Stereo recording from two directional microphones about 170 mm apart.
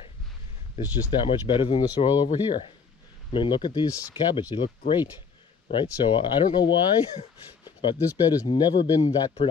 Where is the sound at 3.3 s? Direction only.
30° left (ahead or behind).